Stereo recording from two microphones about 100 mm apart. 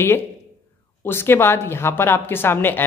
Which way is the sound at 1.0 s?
25° left (ahead or behind).